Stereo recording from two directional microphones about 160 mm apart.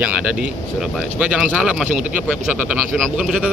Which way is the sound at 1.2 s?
5° right (ahead or behind).